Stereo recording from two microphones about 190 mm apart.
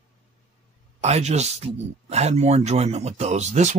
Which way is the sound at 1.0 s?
35° right (ahead or behind).